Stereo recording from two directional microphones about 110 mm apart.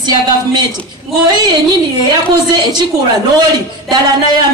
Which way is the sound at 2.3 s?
40° right (ahead or behind).